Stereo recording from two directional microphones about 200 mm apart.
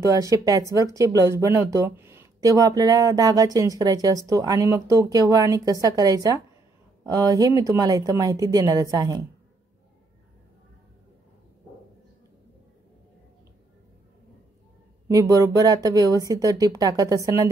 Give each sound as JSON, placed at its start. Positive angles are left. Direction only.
{"t": 0.0, "sound": "speech", "side_deg": -15}
{"t": 15.0, "sound": "speech", "side_deg": -15}